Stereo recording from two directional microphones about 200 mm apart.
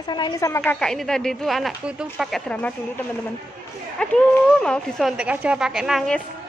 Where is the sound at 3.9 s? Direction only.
5° left (ahead or behind).